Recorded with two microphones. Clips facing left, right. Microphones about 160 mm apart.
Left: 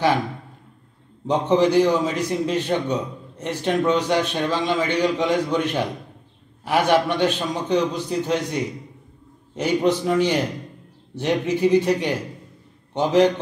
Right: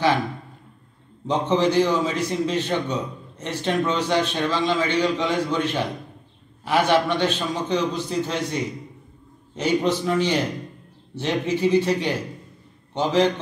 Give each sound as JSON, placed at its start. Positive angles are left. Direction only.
{"t": 1.2, "sound": "a man's voice", "side_deg": 10}
{"t": 9.6, "sound": "a man's voice", "side_deg": 10}